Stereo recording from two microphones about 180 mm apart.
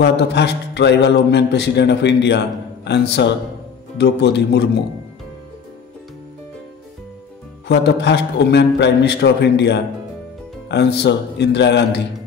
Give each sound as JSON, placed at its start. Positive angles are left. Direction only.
{"t": 0.0, "sound": "a man's voice", "side_deg": 70}
{"t": 7.6, "sound": "a man's voice", "side_deg": 70}